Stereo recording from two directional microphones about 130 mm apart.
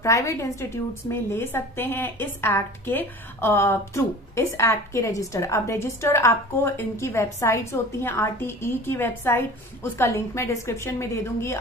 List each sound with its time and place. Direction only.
0.0 s a woman's voice: 25° left (ahead or behind)